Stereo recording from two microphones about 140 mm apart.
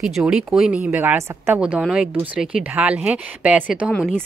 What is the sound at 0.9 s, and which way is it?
Speech, 15° right (ahead or behind).